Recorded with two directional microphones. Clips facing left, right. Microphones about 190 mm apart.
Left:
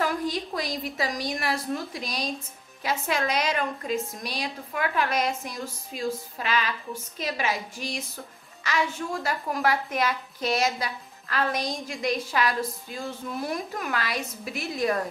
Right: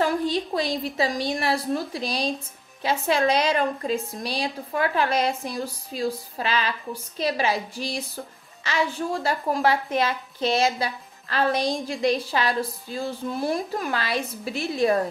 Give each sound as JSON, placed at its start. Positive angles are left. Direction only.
{"t": 0.0, "sound": "a woman's voice", "side_deg": -30}